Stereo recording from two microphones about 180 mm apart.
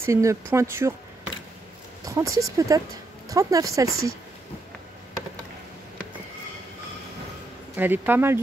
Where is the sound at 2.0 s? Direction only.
20° right (ahead or behind).